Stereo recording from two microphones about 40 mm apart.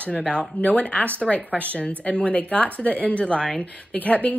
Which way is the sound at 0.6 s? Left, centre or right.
Left.